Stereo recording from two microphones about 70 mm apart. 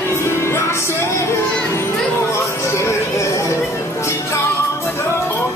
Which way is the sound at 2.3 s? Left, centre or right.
Left.